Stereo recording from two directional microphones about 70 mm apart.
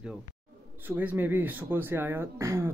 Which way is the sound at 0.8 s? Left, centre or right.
Right.